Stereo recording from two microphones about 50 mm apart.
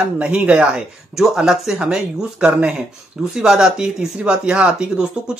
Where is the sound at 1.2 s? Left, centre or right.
Centre.